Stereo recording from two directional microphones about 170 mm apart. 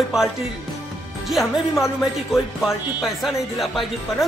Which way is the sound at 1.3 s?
Centre (ahead or behind).